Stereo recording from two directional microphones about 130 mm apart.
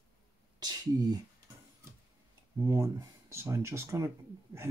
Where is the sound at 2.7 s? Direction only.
20° right (ahead or behind).